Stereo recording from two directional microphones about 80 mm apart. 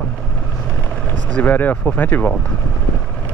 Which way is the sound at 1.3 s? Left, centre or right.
Left.